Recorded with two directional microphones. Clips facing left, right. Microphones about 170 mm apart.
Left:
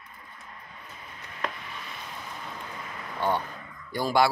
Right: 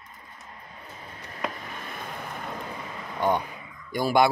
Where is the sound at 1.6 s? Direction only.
50° right (ahead or behind).